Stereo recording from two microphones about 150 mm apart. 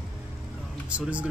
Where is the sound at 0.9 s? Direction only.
10° right (ahead or behind).